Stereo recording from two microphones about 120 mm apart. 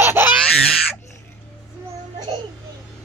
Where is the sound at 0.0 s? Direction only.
20° right (ahead or behind).